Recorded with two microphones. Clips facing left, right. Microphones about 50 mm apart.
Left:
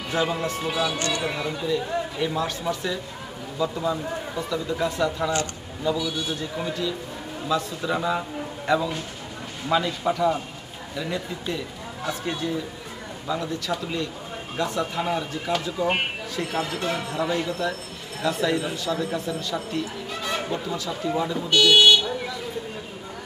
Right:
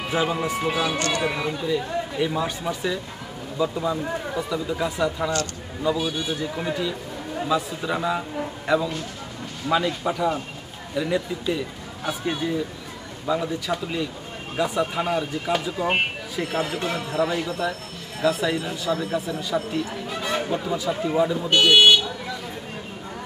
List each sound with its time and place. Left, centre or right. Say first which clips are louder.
0.1 s a man's voice: right 1 dB; centre
0.7 s speech: right 1 dB; right
1.3 s a man's voice: right 1 dB; centre
6.4 s a man's voice: right 2 dB; centre
21.5 s speech: even; right